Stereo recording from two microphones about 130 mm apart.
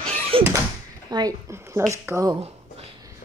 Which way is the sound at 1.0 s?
30° right (ahead or behind).